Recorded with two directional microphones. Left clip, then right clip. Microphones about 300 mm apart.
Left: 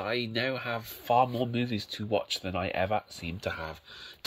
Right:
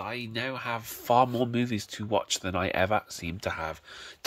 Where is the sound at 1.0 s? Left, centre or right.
Centre.